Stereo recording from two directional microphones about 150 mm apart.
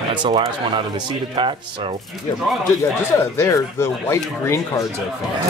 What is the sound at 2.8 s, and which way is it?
Speech, 20° left (ahead or behind).